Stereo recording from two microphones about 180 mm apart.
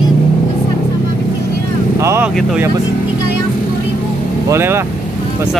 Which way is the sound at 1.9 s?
15° right (ahead or behind).